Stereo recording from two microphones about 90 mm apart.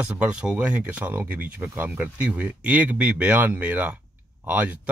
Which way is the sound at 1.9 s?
15° right (ahead or behind).